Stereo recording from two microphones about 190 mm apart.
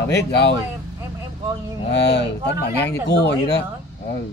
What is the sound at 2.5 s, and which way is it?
Speech, 60° left (ahead or behind).